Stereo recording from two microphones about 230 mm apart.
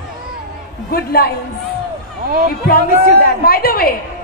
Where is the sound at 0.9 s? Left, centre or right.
Left.